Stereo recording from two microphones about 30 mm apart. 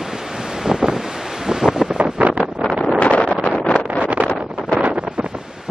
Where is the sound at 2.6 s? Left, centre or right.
Right.